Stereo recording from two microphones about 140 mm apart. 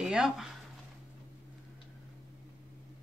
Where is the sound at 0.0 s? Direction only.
5° right (ahead or behind).